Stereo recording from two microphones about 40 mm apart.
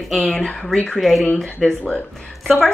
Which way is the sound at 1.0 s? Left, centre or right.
Centre.